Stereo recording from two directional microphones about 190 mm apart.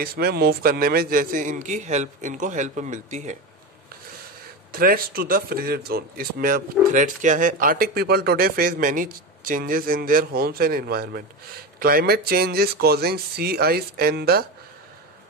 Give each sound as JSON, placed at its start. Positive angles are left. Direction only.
{"t": 0.0, "sound": "speech", "side_deg": -55}
{"t": 4.7, "sound": "speech", "side_deg": -50}